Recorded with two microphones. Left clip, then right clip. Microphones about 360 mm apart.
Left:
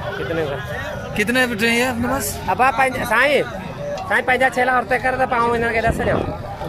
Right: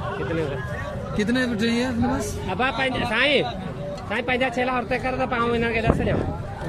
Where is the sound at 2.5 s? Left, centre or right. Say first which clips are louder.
Left 7 dB; centre.